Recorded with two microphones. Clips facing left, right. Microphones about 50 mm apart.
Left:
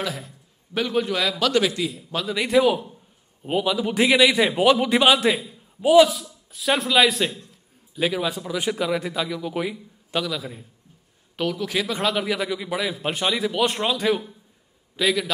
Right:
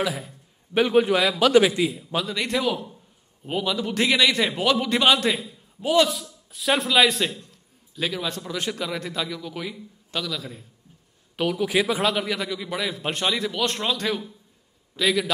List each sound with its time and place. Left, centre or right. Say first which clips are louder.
0.0 s a man's voice: right 3 dB; centre
0.7 s a man's voice: right 4 dB; right
2.1 s a man's voice: left 7 dB; centre
6.5 s a man's voice: left 1 dB; centre
11.3 s a man's voice: right 2 dB; centre
15.0 s a man's voice: even; centre